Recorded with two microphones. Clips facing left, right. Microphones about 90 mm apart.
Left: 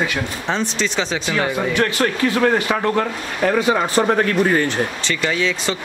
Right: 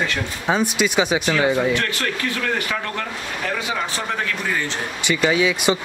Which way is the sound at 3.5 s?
40° left (ahead or behind).